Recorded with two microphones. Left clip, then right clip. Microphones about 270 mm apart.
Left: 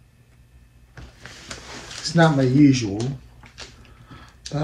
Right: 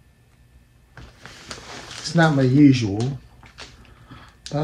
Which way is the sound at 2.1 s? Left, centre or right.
Right.